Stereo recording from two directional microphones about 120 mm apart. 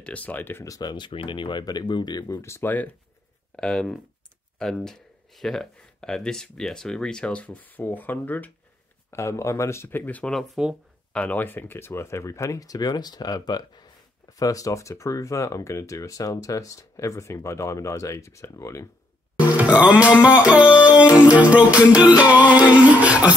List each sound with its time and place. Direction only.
0.0 s speech: 10° left (ahead or behind)
0.7 s speech: 35° left (ahead or behind)
2.4 s speech: 20° left (ahead or behind)
3.5 s speech: 5° left (ahead or behind); by 18.9 s 25° left (ahead or behind)
19.5 s music: 10° right (ahead or behind)